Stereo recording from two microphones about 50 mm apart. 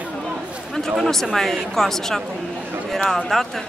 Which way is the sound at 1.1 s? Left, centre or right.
Centre.